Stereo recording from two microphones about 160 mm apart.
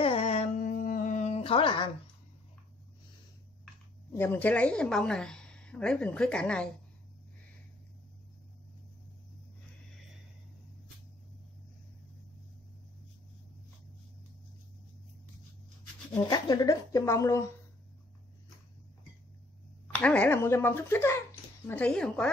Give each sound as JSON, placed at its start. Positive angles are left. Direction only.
{"t": 0.0, "sound": "carnatic music", "side_deg": 40}
{"t": 0.7, "sound": "a sound", "side_deg": 60}
{"t": 4.2, "sound": "a woman's voice", "side_deg": 10}
{"t": 16.2, "sound": "speech", "side_deg": 25}
{"t": 20.0, "sound": "a woman's voice", "side_deg": 10}